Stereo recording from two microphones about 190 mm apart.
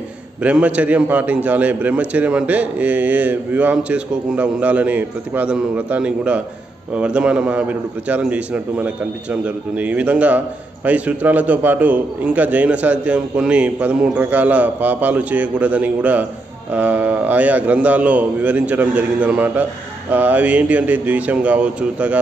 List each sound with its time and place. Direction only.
0.4 s a man's voice: 5° right (ahead or behind)